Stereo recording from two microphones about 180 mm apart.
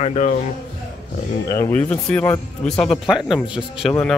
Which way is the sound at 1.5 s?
15° left (ahead or behind).